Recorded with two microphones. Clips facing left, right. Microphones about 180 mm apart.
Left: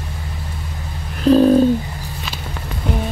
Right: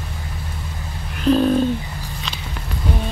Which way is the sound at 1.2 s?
40° left (ahead or behind).